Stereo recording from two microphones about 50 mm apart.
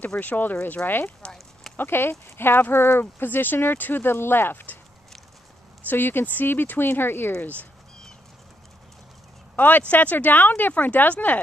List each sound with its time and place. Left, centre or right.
0.0 s speech: left
5.9 s speech: left
9.6 s speech: left